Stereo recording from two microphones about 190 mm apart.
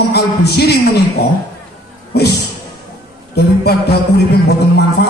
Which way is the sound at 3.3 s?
60° left (ahead or behind).